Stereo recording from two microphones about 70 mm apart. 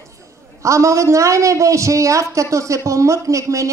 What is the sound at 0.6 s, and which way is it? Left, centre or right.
A woman's voice, right.